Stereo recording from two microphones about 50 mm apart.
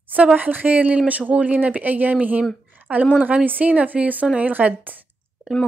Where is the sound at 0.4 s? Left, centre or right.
Right.